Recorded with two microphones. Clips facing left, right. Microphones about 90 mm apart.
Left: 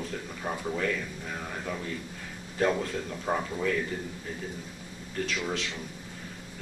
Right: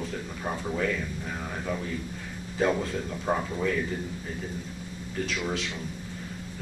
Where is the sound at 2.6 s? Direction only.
Centre (ahead or behind).